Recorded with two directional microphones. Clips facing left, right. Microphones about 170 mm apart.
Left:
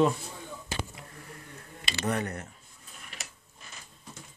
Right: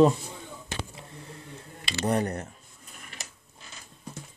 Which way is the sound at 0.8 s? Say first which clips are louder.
Even; 25° right (ahead or behind).